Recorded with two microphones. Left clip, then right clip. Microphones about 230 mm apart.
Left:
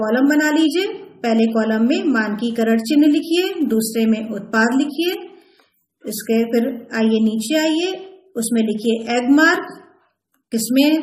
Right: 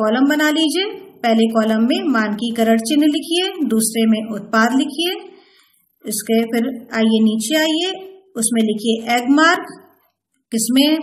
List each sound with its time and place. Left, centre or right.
0.0 s a woman's voice: right